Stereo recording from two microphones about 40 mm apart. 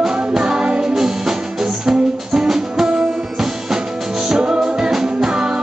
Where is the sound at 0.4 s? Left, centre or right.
Right.